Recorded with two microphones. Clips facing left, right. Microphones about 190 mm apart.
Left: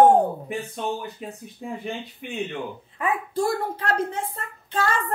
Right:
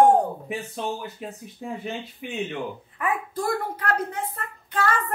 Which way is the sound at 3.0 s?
25° left (ahead or behind).